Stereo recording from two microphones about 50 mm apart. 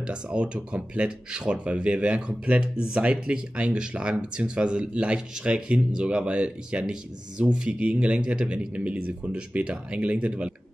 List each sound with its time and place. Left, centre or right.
0.0 s speech: right